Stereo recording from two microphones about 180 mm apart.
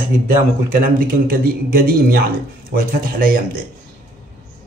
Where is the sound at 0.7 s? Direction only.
55° right (ahead or behind).